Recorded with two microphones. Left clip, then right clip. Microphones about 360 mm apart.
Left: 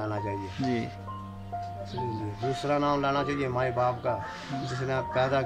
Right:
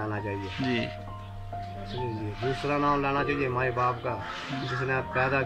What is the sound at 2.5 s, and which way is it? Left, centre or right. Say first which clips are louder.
Speech: even; centre.